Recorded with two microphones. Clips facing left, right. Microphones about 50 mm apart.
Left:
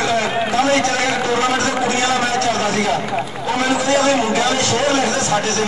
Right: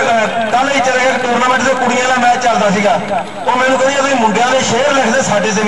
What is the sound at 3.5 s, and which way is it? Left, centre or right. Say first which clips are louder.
A man's voice: right 6 dB; right.